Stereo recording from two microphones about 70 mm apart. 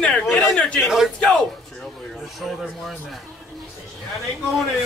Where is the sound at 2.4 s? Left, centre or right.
Centre.